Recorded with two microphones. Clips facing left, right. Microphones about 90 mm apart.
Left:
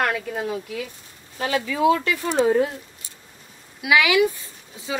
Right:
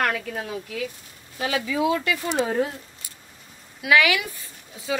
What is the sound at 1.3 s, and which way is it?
Speech, 40° left (ahead or behind).